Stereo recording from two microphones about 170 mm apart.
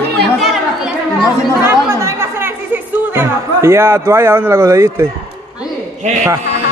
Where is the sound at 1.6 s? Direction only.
15° right (ahead or behind).